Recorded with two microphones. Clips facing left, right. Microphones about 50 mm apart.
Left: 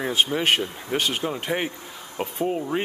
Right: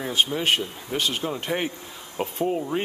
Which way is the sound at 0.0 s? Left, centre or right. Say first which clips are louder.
Left 1 dB; left.